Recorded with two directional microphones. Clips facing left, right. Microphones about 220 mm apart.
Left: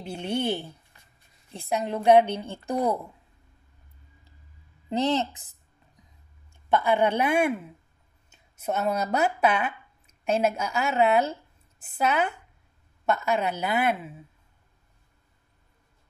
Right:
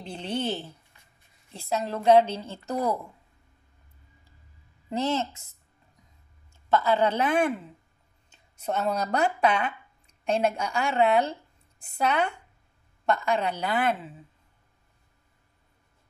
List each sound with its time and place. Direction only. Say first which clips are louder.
0.0 s a woman's voice: left 2 dB; 10° left (ahead or behind)
4.8 s a woman's voice: left 2 dB; 20° left (ahead or behind)